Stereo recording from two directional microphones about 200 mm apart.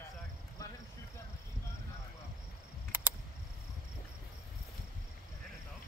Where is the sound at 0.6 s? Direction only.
15° left (ahead or behind).